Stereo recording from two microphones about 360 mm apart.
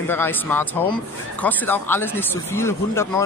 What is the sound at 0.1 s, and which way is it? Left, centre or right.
A man's voice, centre.